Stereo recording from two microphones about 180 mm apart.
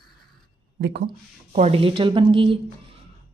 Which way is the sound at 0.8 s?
70° right (ahead or behind).